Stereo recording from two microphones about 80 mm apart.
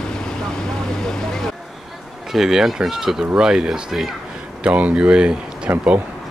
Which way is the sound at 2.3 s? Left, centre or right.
Centre.